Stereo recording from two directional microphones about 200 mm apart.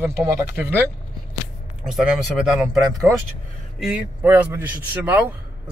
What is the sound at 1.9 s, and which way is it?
A man's voice, centre (ahead or behind).